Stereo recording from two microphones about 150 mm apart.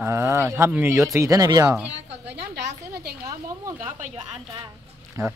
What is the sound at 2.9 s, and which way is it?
Speech, 90° right.